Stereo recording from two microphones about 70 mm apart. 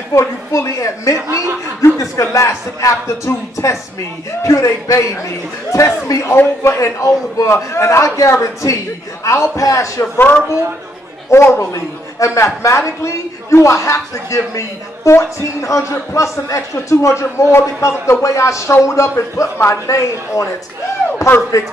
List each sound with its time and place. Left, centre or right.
0.1 s a man's voice: left
10.1 s speech: left
12.2 s a man's voice: left
21.5 s a man's voice: left